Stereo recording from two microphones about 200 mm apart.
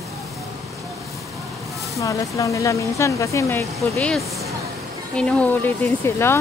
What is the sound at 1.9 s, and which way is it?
Speech, 15° left (ahead or behind).